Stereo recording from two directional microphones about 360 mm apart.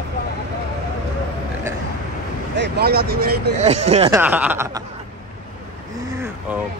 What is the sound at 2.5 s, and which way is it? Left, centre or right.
Speech, right.